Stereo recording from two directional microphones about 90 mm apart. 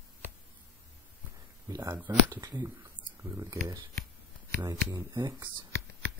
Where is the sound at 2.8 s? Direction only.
30° right (ahead or behind).